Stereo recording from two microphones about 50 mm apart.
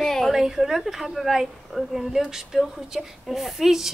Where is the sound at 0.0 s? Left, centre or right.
Centre.